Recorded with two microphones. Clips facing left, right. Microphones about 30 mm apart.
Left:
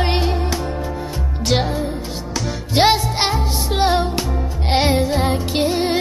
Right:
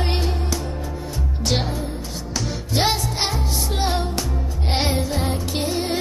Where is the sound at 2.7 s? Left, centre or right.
Left.